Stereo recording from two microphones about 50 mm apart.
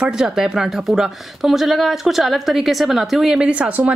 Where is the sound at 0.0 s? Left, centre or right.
Centre.